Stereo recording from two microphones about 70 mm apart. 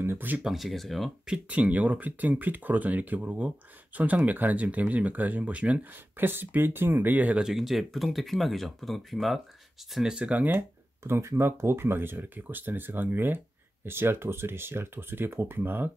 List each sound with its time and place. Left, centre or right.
0.0 s speech: right
0.4 s speech: centre
1.2 s speech: centre
6.1 s speech: right
7.4 s speech: centre
9.9 s speech: centre
11.1 s speech: right